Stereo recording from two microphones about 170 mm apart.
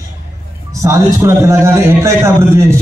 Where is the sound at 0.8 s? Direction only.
15° right (ahead or behind).